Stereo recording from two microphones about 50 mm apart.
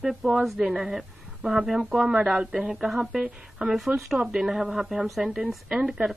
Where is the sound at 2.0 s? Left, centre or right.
Right.